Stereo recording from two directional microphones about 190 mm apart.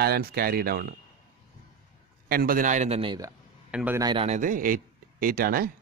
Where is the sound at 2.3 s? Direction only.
50° right (ahead or behind); by 3.3 s 25° right (ahead or behind).